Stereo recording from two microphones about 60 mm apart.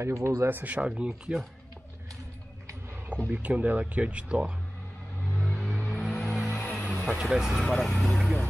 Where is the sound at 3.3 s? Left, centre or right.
Right.